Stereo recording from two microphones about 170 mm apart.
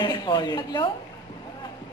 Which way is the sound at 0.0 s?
25° left (ahead or behind).